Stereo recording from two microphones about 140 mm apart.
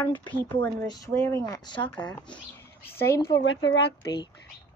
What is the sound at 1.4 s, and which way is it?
Speech, 30° left (ahead or behind).